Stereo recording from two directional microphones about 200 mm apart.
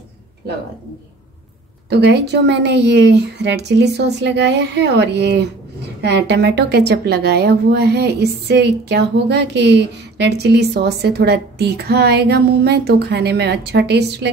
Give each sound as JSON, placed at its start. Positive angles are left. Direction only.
{"t": 1.9, "sound": "a woman's voice", "side_deg": -55}